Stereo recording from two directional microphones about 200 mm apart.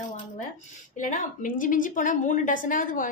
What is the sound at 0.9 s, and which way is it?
A woman's voice, 40° left (ahead or behind).